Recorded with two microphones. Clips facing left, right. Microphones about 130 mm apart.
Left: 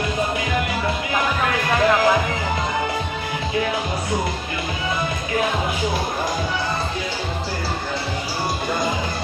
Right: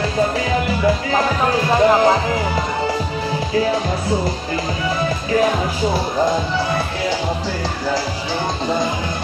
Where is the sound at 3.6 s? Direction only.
30° right (ahead or behind).